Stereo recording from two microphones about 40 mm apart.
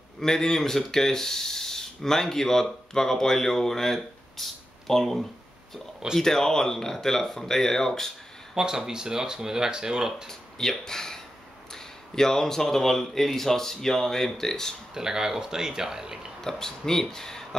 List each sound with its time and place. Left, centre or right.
0.2 s speech: centre
8.5 s speech: centre
10.2 s speech: centre
15.0 s speech: centre
16.3 s speech: centre